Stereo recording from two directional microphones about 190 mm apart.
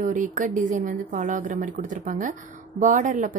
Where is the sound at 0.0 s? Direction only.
40° right (ahead or behind).